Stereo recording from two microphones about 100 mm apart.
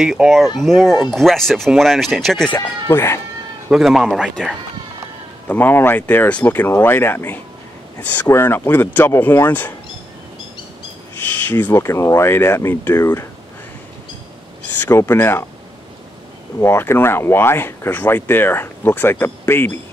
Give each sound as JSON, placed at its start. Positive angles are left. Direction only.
{"t": 0.0, "sound": "speech", "side_deg": -5}
{"t": 2.9, "sound": "speech", "side_deg": 25}
{"t": 3.7, "sound": "speech", "side_deg": -5}
{"t": 5.5, "sound": "speech", "side_deg": 20}
{"t": 11.1, "sound": "speech", "side_deg": 20}
{"t": 14.7, "sound": "speech", "side_deg": 20}
{"t": 16.5, "sound": "speech", "side_deg": 25}